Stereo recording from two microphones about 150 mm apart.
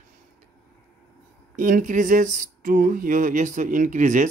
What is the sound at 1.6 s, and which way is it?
Speech, 60° right (ahead or behind).